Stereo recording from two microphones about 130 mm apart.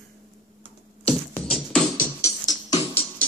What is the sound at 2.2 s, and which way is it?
Music, 25° left (ahead or behind).